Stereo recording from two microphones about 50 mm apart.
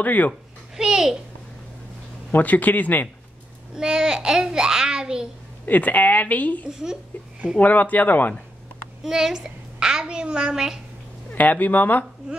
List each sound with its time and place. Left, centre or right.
0.0 s a woman's voice: left
0.7 s a child's voice: centre
2.3 s a woman's voice: left
3.7 s a woman's voice: centre
5.7 s a woman's voice: left
6.7 s a woman's voice: centre
7.5 s a woman's voice: left
9.0 s a woman's voice: centre
11.3 s a woman's voice: left